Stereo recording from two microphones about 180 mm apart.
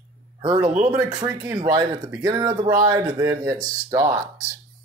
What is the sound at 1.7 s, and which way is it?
Speech, 20° right (ahead or behind).